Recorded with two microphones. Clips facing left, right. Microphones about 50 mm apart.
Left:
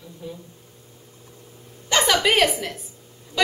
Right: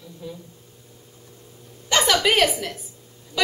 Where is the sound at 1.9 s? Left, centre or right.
Centre.